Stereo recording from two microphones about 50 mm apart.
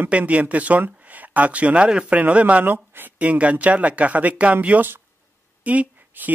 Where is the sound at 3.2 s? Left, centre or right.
Right.